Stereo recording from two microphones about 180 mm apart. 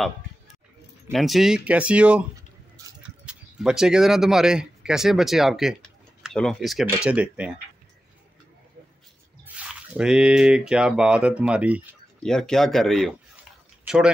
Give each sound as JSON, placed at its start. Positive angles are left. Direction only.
{"t": 1.1, "sound": "speech", "side_deg": 0}
{"t": 9.4, "sound": "speech", "side_deg": -5}
{"t": 12.2, "sound": "speech", "side_deg": 5}